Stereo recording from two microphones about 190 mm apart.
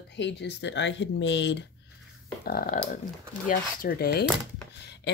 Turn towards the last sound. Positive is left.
turn(degrees=60)  # may be behind; listen again after turning